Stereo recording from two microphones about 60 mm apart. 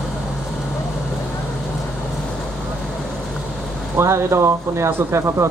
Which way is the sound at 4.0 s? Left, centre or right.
Right.